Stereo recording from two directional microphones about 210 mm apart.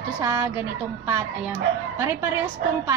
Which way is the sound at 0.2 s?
15° right (ahead or behind).